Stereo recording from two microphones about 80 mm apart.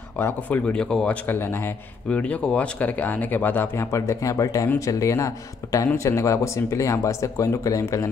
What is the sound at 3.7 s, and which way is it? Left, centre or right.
Speech, left.